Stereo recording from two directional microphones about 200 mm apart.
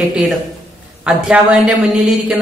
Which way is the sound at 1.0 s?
5° right (ahead or behind).